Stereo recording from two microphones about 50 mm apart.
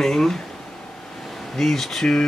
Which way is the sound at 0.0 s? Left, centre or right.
Centre.